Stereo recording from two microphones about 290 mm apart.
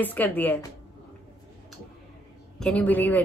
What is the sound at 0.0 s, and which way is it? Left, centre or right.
Speech, centre.